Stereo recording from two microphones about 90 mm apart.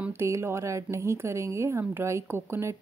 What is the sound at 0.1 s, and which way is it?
Speech, 30° right (ahead or behind).